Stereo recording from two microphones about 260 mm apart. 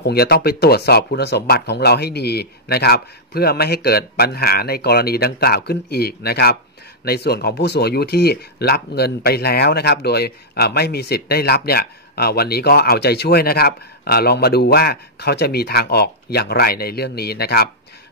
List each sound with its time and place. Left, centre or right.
0.0 s speech: left